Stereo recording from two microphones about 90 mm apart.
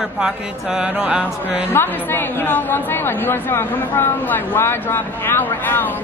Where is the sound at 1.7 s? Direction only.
25° left (ahead or behind).